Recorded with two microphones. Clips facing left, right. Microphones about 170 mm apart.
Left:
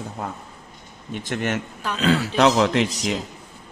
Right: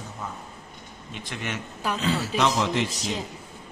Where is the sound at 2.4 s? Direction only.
90° left.